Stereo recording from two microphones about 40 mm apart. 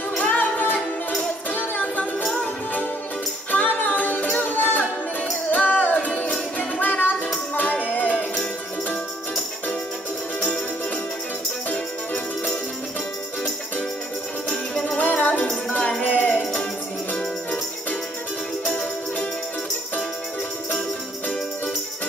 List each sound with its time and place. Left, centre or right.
0.2 s music: left
14.5 s music: centre
15.0 s music: left